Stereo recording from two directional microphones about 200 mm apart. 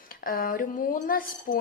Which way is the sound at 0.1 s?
45° left (ahead or behind).